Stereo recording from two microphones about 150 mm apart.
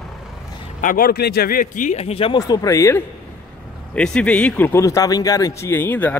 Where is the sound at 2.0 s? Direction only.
40° left (ahead or behind).